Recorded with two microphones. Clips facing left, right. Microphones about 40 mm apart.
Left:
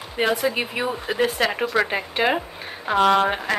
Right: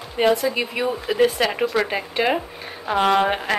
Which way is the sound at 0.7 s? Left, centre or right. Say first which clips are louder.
Right 2 dB; centre.